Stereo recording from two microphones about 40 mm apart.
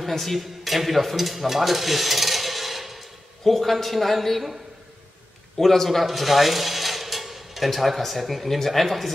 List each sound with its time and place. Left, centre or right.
0.0 s speech: centre
5.6 s speech: centre